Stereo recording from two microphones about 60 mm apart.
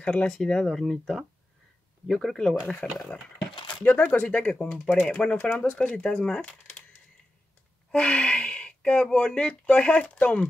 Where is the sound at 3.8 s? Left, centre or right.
Left; by 6.6 s centre.